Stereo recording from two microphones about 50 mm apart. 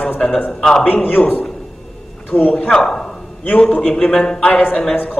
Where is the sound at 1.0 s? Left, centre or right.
Left.